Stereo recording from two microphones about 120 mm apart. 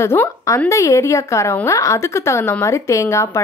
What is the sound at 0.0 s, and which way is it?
A woman's voice, 20° left (ahead or behind).